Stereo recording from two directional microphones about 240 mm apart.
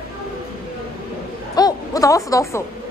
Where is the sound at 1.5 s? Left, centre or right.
Centre.